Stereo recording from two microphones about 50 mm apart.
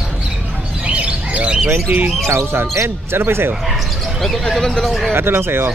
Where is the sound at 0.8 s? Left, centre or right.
Right.